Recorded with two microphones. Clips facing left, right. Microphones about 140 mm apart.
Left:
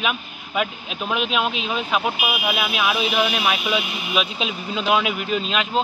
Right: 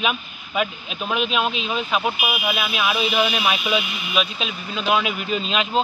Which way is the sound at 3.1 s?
Centre (ahead or behind).